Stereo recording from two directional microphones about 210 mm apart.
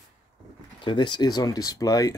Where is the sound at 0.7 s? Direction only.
20° left (ahead or behind).